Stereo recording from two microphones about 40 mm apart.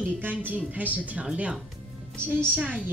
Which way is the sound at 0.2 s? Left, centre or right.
Right.